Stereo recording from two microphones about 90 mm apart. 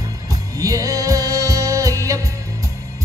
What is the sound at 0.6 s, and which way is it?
Music, 40° right (ahead or behind).